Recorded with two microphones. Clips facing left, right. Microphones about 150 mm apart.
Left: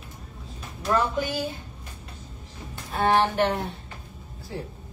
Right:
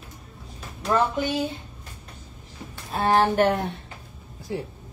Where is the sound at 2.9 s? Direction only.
40° right (ahead or behind).